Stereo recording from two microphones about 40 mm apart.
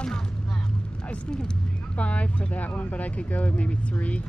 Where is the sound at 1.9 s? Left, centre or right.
Left.